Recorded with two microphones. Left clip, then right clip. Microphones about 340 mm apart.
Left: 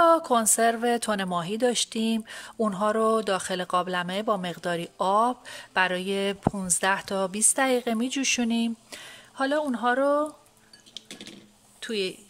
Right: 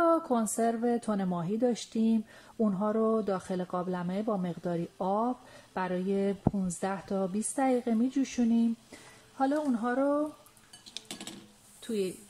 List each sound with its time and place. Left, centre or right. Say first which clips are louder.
0.0 s a woman's voice: left 7 dB; left
11.8 s speech: left 4 dB; left